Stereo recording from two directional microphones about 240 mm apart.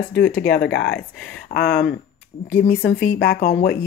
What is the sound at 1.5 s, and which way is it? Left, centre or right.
Speech, left.